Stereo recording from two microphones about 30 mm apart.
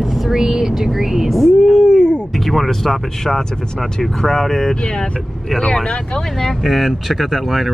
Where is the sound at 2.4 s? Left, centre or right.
Centre.